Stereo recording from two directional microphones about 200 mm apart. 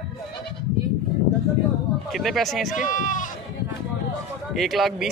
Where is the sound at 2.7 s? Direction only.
40° left (ahead or behind).